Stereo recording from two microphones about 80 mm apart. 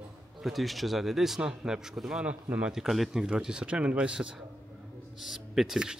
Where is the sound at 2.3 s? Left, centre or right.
Centre.